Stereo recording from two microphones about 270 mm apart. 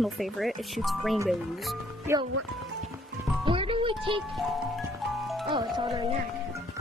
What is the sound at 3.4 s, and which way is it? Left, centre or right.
Music, centre.